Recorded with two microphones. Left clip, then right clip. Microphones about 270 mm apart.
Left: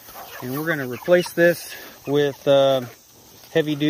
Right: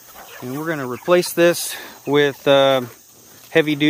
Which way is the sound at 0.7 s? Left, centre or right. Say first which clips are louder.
Right 1 dB; centre.